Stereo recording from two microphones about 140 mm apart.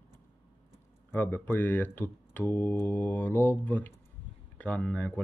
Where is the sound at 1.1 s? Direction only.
15° left (ahead or behind).